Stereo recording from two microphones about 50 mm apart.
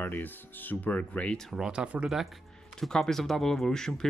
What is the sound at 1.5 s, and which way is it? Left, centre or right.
Speech, centre.